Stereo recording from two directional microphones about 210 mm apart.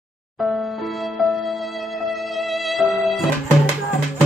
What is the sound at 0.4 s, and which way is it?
Music, centre (ahead or behind).